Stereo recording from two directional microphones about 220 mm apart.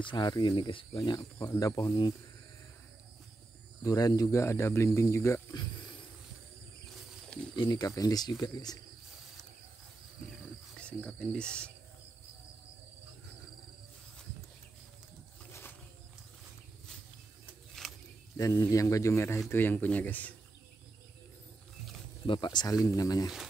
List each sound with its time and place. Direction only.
0.0 s speech: 20° left (ahead or behind)
3.8 s speech: 15° left (ahead or behind)
7.5 s speech: 20° left (ahead or behind)
10.8 s cricket: 5° left (ahead or behind)
17.8 s a sound: centre (ahead or behind)
18.4 s speech: 15° left (ahead or behind)
22.2 s speech: 20° left (ahead or behind)